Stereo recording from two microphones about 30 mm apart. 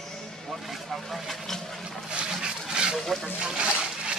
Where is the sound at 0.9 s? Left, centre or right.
Centre.